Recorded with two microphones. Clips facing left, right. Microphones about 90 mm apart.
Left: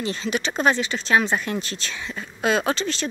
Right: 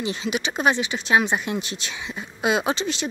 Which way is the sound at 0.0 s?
15° right (ahead or behind).